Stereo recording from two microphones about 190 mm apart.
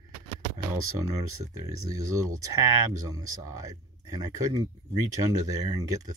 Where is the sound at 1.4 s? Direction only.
15° right (ahead or behind).